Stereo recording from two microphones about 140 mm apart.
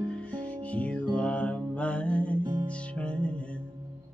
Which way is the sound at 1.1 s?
10° left (ahead or behind).